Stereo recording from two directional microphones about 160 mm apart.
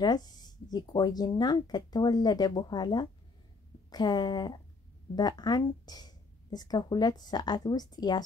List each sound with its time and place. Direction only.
0.0 s speech: 25° left (ahead or behind)